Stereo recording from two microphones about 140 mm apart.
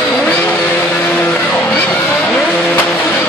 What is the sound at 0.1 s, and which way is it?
Vehicle, 10° left (ahead or behind).